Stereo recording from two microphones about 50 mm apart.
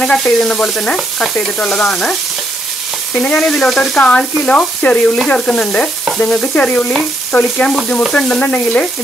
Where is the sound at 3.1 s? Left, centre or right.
Left.